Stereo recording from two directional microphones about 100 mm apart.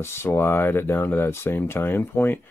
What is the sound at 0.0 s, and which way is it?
Speech, 25° left (ahead or behind).